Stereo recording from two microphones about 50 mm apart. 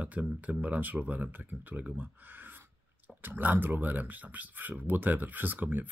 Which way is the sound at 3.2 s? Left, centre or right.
Right.